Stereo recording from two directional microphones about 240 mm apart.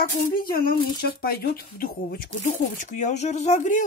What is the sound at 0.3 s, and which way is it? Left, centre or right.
Speech, left.